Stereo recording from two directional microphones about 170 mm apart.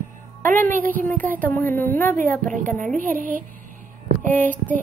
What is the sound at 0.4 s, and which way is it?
Speech, 10° left (ahead or behind).